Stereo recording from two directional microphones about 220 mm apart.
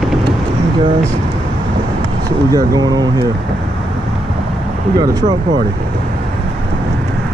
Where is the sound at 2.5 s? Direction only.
15° right (ahead or behind).